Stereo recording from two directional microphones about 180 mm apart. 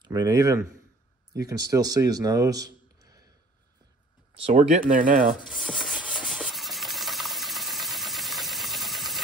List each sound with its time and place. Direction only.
0.0 s a man's voice: 25° right (ahead or behind)
4.4 s speech: 40° right (ahead or behind)
5.3 s rub: centre (ahead or behind)